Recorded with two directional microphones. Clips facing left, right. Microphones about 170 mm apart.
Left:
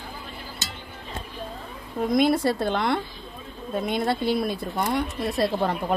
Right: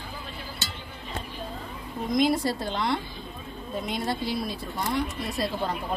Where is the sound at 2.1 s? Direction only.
55° left (ahead or behind).